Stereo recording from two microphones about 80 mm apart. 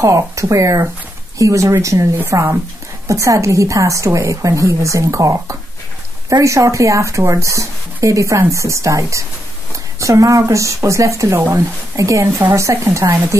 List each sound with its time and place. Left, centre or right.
0.0 s speech: right